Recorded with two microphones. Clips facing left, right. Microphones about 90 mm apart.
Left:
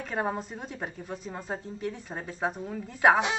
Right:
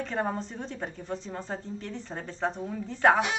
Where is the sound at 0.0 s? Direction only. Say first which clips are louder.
Even; 10° left (ahead or behind).